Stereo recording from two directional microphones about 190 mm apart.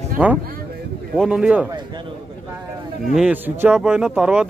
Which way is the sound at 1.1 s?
Centre (ahead or behind).